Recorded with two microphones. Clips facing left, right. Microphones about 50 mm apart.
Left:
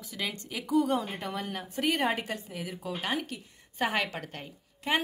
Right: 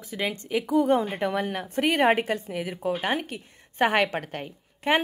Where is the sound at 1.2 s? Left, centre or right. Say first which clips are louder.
Right 8 dB; right.